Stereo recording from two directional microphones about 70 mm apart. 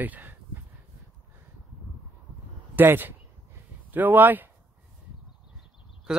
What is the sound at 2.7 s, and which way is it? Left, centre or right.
A man's voice, right.